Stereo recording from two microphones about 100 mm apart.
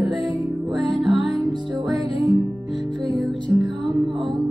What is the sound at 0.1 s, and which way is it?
Music, centre (ahead or behind).